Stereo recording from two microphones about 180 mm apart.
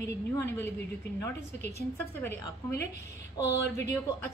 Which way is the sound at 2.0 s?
10° left (ahead or behind).